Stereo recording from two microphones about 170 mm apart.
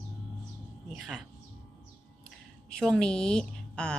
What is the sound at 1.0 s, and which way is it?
Speech, 5° right (ahead or behind).